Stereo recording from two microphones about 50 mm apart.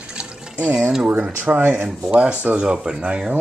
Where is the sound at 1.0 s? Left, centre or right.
Right.